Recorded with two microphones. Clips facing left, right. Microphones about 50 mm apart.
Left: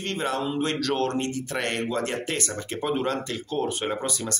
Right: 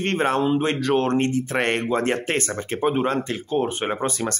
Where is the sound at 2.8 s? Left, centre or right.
Right.